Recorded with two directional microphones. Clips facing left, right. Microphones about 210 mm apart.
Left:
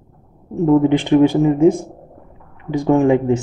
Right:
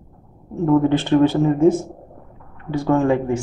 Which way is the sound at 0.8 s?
15° left (ahead or behind).